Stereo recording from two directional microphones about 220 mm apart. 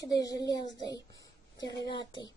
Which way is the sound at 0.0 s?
15° left (ahead or behind).